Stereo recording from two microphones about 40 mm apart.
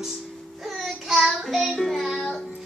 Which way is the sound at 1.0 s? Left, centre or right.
Centre.